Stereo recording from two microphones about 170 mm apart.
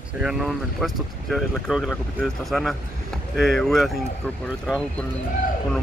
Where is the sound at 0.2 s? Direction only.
Centre (ahead or behind).